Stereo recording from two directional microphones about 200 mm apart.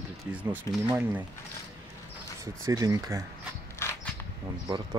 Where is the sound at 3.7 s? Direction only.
10° left (ahead or behind).